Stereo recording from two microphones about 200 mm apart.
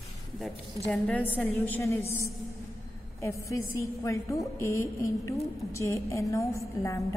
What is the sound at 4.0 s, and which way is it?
A woman's voice, 15° left (ahead or behind).